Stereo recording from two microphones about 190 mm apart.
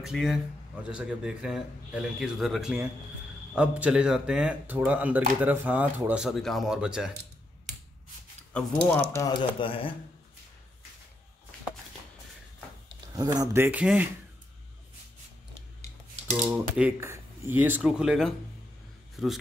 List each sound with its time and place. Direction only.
0.0 s speech: centre (ahead or behind)
8.5 s speech: 5° left (ahead or behind)
9.1 s speech: 20° left (ahead or behind)
13.1 s speech: 20° right (ahead or behind)
16.3 s speech: 10° right (ahead or behind)